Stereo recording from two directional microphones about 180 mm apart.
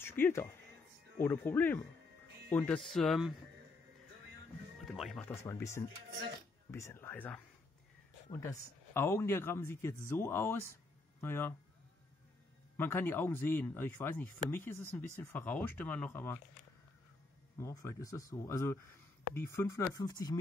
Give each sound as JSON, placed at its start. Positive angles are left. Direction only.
{"t": 0.0, "sound": "speech", "side_deg": 10}
{"t": 4.9, "sound": "speech", "side_deg": 0}
{"t": 5.2, "sound": "speech", "side_deg": 15}
{"t": 12.7, "sound": "speech", "side_deg": 10}
{"t": 17.6, "sound": "speech", "side_deg": 15}